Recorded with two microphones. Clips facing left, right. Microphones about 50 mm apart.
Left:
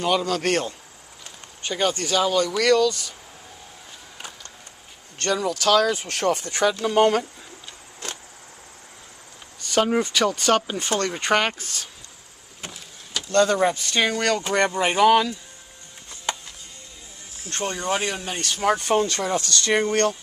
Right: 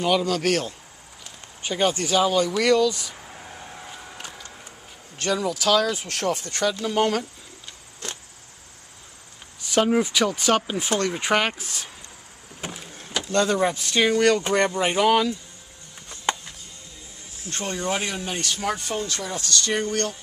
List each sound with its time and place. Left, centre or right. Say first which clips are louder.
0.0 s speech: even; centre
1.6 s speech: right 1 dB; centre
5.2 s speech: left 1 dB; centre
9.6 s a sound: even; centre
9.8 s speech: even; centre
17.6 s speech: left 2 dB; centre
18.4 s speech: left 7 dB; left
18.9 s speech: left 7 dB; left